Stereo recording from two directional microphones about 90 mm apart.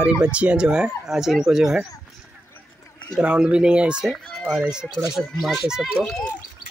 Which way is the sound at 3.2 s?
10° right (ahead or behind).